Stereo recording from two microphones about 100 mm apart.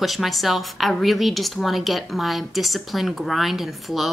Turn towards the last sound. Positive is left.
turn(degrees=0)  # may be behind; listen again after turning